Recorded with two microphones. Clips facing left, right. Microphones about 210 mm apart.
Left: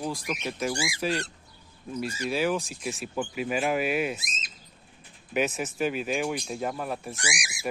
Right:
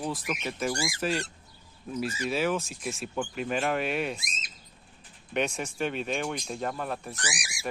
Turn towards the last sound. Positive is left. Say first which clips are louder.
# left 2 dB
turn(degrees=15)  # may be behind; listen again after turning